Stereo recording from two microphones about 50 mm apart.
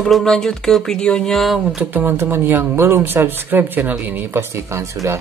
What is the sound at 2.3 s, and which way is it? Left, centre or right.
Speech, right.